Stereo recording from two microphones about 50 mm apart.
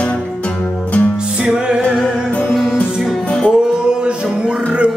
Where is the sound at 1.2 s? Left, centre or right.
Centre.